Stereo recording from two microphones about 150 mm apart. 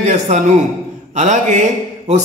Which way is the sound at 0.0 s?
55° right (ahead or behind).